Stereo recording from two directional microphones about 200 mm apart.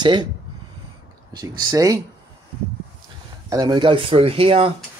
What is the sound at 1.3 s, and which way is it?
Speech, 20° right (ahead or behind).